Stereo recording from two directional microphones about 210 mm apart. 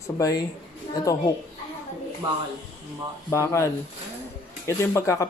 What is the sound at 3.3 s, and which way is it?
Speech, 15° left (ahead or behind).